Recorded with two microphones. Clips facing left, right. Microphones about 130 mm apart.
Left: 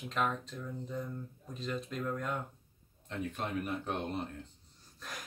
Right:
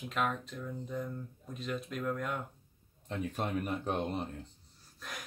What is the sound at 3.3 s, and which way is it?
Speech, 40° right (ahead or behind).